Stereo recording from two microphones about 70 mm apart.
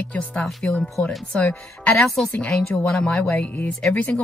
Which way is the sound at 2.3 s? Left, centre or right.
Centre.